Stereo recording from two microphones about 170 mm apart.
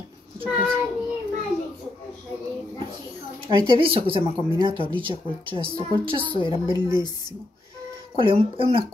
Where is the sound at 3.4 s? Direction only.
30° right (ahead or behind).